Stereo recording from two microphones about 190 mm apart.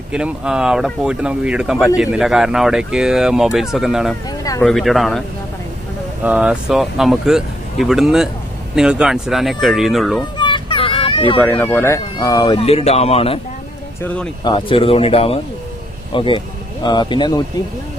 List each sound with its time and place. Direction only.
0.1 s speech: 5° right (ahead or behind)
6.2 s speech: 5° right (ahead or behind)
10.3 s a sound: 25° left (ahead or behind)
11.3 s speech: 10° left (ahead or behind); by 13.4 s 30° left (ahead or behind)
14.0 s speech: 5° left (ahead or behind)
14.4 s speech: 25° left (ahead or behind)